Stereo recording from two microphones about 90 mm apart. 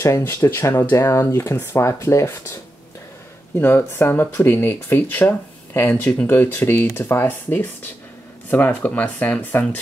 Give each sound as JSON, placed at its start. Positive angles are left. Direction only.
{"t": 0.2, "sound": "speech", "side_deg": 30}